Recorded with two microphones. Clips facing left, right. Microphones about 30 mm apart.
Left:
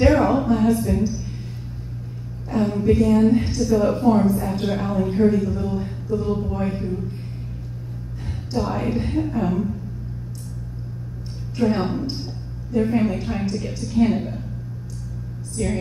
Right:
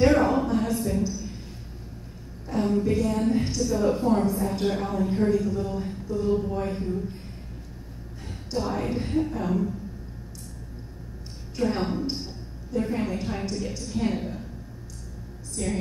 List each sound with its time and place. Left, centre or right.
0.0 s a sound: centre
2.5 s a woman's voice: centre
4.6 s speech: centre
8.5 s speech: centre
11.7 s a woman's voice: centre
15.5 s a woman's voice: centre